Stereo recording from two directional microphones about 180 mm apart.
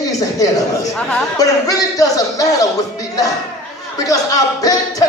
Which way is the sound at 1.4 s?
20° left (ahead or behind).